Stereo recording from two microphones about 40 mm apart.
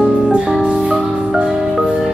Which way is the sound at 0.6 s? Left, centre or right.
Right.